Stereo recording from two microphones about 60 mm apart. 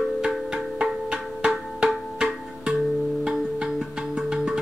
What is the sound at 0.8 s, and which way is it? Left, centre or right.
Music, centre.